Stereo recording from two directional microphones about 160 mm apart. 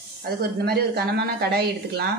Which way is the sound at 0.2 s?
75° right (ahead or behind).